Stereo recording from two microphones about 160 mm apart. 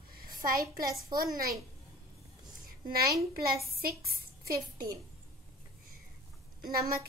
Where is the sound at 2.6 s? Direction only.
70° right (ahead or behind).